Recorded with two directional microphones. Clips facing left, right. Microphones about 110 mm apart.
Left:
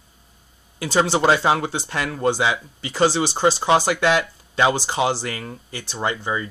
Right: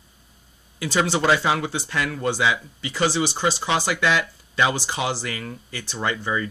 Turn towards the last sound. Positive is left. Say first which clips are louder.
# left 1 dB
turn(degrees=20)  # may be behind; listen again after turning